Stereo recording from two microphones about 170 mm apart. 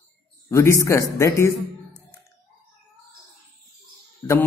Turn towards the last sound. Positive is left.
turn(degrees=10)  # may be behind; listen again after turning